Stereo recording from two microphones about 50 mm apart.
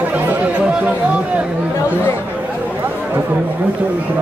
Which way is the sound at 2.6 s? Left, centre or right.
Right.